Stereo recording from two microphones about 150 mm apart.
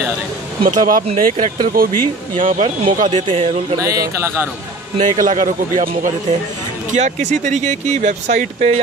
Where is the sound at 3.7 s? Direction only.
20° right (ahead or behind).